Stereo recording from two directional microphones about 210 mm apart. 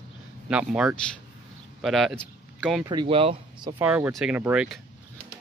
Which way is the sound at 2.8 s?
20° right (ahead or behind).